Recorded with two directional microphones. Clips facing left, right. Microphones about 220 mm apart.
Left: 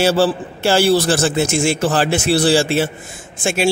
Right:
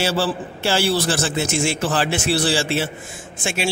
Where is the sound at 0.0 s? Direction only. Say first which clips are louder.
Left 6 dB; 45° left (ahead or behind).